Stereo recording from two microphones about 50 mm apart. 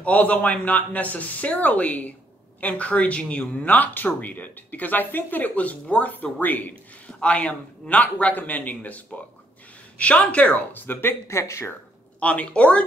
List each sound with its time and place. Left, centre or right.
0.0 s speech: left
10.7 s speech: left
11.2 s speech: left
12.2 s speech: left